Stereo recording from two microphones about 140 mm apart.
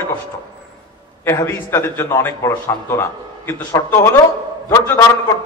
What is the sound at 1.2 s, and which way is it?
A man's voice, 15° left (ahead or behind).